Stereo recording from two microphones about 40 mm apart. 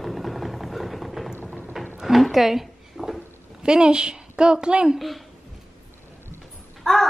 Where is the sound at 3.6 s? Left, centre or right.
Right.